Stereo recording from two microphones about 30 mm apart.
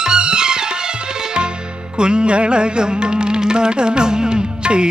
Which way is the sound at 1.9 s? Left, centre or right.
Right.